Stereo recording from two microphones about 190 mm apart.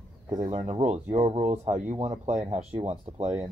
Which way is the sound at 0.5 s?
30° right (ahead or behind).